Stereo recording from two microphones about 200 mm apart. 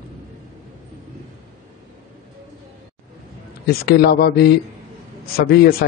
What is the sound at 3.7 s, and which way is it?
Speech, 50° left (ahead or behind).